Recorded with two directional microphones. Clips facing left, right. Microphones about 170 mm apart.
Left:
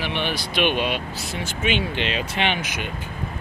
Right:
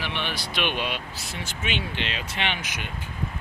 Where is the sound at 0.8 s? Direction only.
60° left (ahead or behind).